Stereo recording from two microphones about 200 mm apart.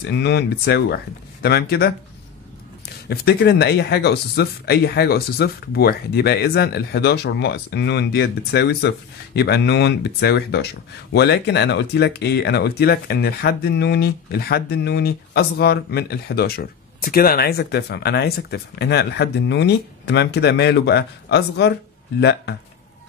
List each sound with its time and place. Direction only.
0.0 s speech: 55° left (ahead or behind)
3.1 s speech: 55° left (ahead or behind)